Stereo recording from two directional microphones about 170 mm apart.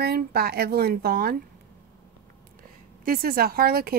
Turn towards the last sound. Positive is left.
turn(degrees=-60)  # may be behind; listen again after turning